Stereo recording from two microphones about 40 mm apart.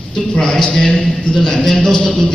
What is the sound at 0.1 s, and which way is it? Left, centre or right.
A man's voice, centre.